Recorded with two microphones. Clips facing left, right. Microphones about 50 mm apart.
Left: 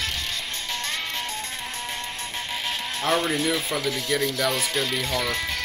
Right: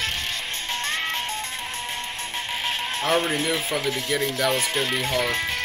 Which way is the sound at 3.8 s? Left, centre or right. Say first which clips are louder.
Even; right.